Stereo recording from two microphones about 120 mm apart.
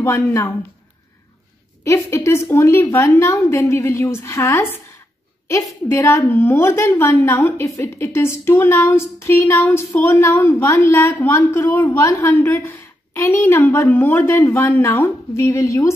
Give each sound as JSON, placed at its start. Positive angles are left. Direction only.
{"t": 0.0, "sound": "a woman's voice", "side_deg": 20}
{"t": 1.9, "sound": "a woman's voice", "side_deg": 20}
{"t": 5.9, "sound": "a woman's voice", "side_deg": 25}